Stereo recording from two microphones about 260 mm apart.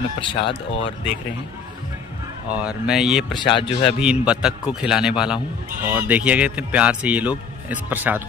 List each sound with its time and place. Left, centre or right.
0.3 s speech: left
2.5 s a man's voice: centre
3.3 s speech: centre
4.0 s a man's voice: centre